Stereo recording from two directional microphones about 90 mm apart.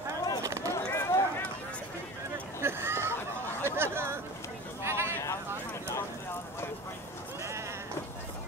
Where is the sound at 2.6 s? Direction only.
25° right (ahead or behind).